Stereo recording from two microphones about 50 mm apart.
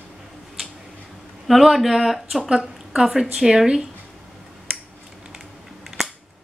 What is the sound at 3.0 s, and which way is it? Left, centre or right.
Speech, centre.